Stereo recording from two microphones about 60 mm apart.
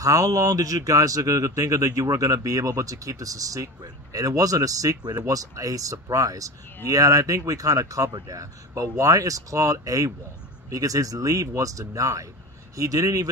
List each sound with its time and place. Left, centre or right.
0.0 s speech: right